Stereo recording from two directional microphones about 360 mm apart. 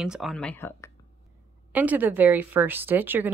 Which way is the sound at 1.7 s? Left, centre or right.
Centre.